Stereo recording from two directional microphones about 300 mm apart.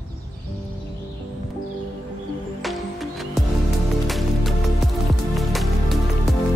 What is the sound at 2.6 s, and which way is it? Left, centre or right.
Music, centre.